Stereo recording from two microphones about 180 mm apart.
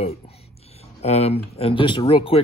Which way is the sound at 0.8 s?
35° left (ahead or behind).